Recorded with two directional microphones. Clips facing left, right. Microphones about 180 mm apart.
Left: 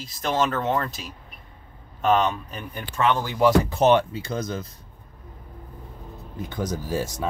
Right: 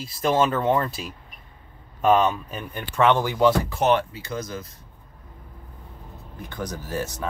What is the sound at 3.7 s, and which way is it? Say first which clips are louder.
Speech: left 3 dB; 30° left (ahead or behind).